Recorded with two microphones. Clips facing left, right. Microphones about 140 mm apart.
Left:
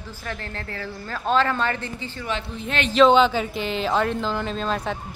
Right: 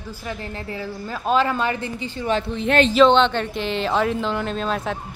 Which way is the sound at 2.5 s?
85° right.